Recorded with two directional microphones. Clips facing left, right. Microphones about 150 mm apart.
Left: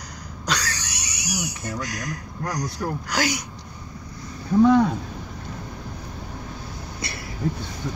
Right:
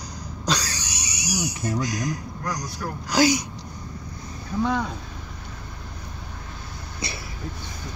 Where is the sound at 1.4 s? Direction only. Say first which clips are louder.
Right 5 dB; 20° right (ahead or behind).